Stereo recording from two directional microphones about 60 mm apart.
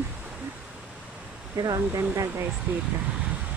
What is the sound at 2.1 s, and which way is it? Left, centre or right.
Speech, right.